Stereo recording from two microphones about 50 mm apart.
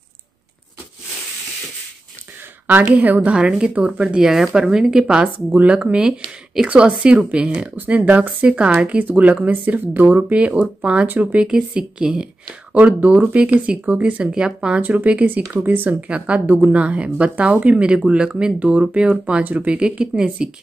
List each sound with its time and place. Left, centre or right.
2.8 s speech: right
3.3 s speech: centre
5.0 s speech: right
7.7 s speech: right
12.7 s speech: right
14.2 s speech: centre
14.8 s speech: right
16.0 s speech: right